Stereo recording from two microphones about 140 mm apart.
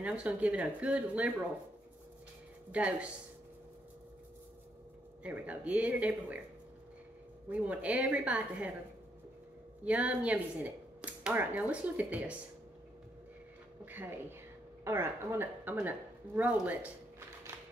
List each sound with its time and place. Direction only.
0.0 s speech: 10° right (ahead or behind)
2.7 s speech: 10° right (ahead or behind)
5.2 s speech: 10° right (ahead or behind)
7.4 s speech: 10° right (ahead or behind)
9.8 s speech: 10° right (ahead or behind)
14.9 s speech: 15° right (ahead or behind)
17.5 s tap: 20° right (ahead or behind)